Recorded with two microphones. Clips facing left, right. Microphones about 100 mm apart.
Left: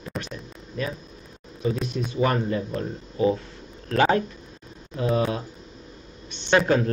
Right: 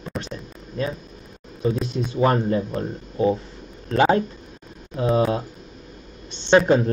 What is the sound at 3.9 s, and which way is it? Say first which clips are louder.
Speech: right 2 dB; 20° right (ahead or behind).